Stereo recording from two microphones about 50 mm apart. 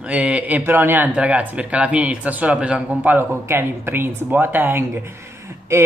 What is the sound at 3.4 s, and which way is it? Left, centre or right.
Speech, right.